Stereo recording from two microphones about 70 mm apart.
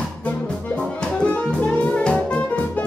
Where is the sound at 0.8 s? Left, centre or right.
Centre.